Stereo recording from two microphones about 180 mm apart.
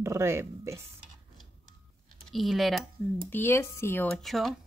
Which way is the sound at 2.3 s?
Centre (ahead or behind).